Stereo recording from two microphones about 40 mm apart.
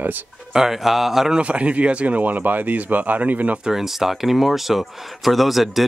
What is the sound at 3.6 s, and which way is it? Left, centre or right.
Speech, centre.